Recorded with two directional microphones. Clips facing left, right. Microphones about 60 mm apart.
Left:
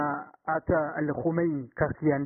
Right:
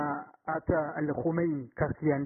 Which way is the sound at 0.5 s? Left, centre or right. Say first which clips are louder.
Left 3 dB; centre.